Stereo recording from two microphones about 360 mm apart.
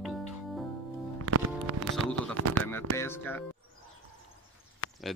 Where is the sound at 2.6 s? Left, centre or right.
Centre.